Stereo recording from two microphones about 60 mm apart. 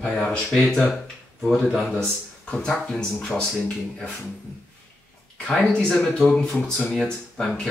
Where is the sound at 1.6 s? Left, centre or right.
Centre.